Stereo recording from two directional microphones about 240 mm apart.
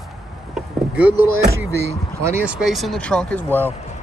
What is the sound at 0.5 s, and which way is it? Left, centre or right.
Vehicle, centre.